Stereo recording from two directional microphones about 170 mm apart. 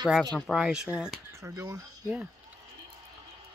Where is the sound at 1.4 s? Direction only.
15° right (ahead or behind).